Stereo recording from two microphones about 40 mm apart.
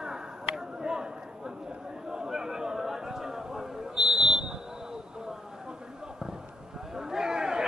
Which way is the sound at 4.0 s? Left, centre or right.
Right.